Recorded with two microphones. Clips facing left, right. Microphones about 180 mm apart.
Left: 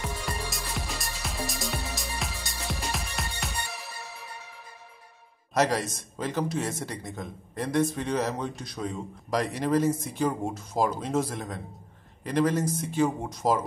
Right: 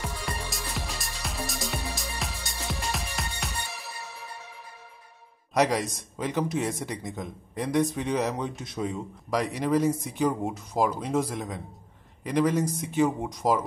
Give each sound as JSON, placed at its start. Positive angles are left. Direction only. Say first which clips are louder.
{"t": 0.0, "sound": "music", "louder": "left 1 dB", "side_deg": 0}
{"t": 5.5, "sound": "a man's voice", "louder": "right 1 dB", "side_deg": -15}